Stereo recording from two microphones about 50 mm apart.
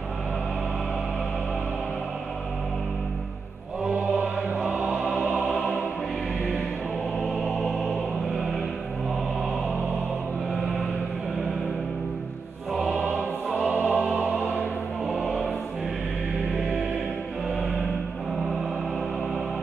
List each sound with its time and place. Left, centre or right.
3.8 s mantra: right
4.4 s music: centre
5.2 s music: right
7.2 s music: centre
12.7 s music: centre
13.7 s music: right